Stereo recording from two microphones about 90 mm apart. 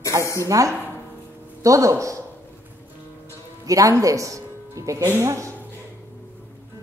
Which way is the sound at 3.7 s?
40° right (ahead or behind).